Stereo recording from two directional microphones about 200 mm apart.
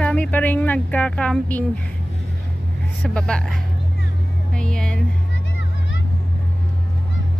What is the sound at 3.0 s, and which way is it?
Speech, 5° left (ahead or behind).